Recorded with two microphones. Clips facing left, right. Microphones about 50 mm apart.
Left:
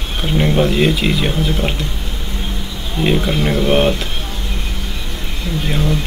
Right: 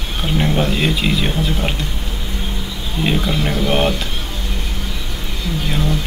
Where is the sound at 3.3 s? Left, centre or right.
Left.